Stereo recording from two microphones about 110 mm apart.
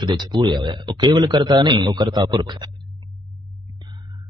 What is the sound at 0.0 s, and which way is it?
A man's voice, 45° right (ahead or behind).